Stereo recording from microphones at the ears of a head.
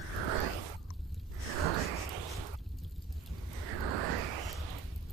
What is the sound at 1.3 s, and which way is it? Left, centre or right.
Sigh, right.